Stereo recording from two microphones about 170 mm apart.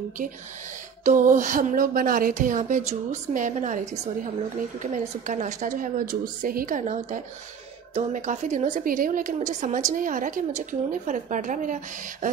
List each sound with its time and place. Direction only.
1.0 s speech: 50° right (ahead or behind)